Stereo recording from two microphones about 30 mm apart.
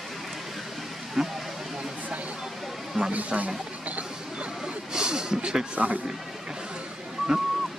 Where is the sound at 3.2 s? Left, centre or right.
Right.